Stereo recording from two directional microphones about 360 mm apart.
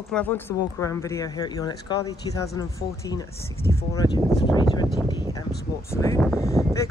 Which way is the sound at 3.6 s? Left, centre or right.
Left.